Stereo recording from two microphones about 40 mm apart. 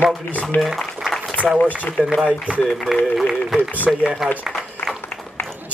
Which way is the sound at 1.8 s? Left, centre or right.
Left.